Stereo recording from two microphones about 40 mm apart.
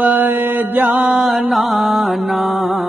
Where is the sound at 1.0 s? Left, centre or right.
Centre.